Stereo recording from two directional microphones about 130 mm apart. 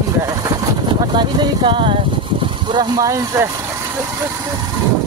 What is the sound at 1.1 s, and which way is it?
Speech, 35° right (ahead or behind).